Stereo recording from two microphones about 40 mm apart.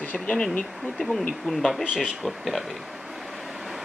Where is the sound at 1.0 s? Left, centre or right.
Centre.